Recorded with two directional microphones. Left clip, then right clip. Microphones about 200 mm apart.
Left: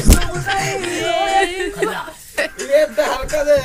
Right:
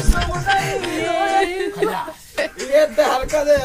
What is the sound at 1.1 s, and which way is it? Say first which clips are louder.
Singing: left 2 dB; 35° right (ahead or behind).